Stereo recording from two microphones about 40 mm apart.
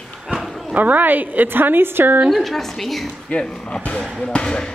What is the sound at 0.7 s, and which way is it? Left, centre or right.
A woman's voice, right.